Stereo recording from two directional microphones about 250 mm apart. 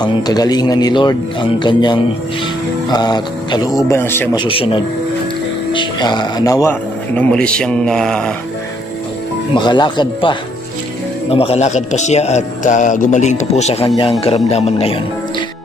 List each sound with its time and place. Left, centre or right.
0.0 s a man's voice: centre
9.6 s a man's voice: centre